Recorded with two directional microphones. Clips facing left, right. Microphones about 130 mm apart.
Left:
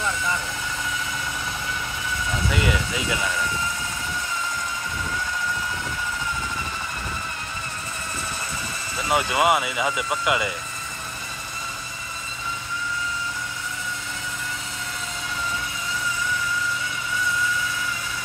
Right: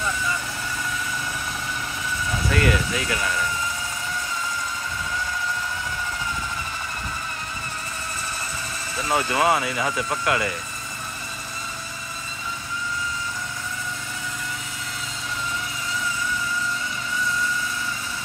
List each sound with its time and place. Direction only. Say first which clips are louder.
2.5 s speech: right 4 dB; 20° left (ahead or behind)
9.1 s speech: left 1 dB; 15° left (ahead or behind)